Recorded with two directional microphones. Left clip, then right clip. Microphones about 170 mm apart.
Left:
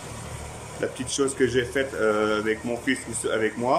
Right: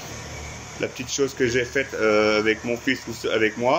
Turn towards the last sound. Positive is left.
turn(degrees=5)  # may be behind; listen again after turning